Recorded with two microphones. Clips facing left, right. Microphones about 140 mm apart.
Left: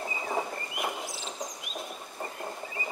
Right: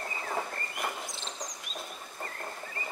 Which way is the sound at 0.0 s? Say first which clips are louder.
Left 3 dB; 10° left (ahead or behind).